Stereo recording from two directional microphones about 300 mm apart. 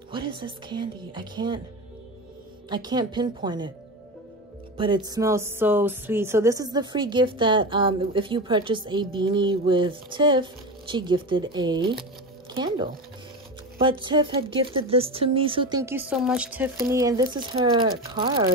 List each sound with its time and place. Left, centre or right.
0.1 s speech: centre
2.7 s speech: centre
4.7 s speech: centre